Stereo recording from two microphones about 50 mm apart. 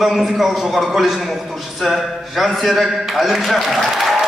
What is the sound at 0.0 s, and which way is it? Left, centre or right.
A man's voice, centre.